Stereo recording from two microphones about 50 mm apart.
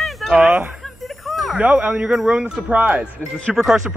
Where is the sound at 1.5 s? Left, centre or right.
Right.